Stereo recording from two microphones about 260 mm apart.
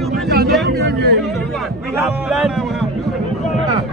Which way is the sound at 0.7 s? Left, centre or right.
Right.